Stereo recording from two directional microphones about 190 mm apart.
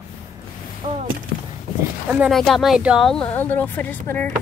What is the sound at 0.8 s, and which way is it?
Speech, 30° right (ahead or behind).